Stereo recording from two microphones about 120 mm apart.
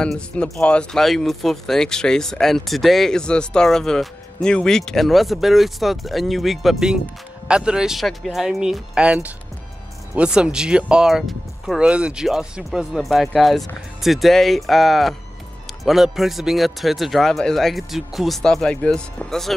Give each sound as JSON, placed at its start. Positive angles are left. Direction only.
{"t": 0.0, "sound": "speech", "side_deg": 5}